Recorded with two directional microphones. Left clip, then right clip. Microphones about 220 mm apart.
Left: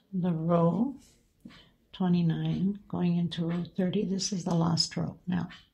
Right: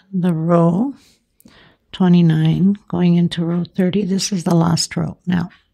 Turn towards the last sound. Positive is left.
turn(degrees=-50)  # may be behind; listen again after turning